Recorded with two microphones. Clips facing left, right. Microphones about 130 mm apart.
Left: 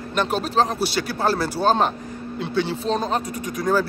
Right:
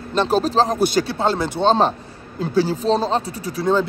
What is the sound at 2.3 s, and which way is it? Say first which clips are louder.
Speech: right 5 dB; 40° right (ahead or behind).